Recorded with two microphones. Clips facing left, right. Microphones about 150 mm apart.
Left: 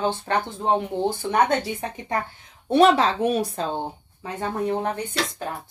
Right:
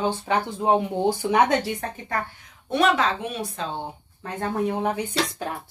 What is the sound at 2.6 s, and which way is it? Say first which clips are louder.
Speech: left 4 dB; 30° left (ahead or behind).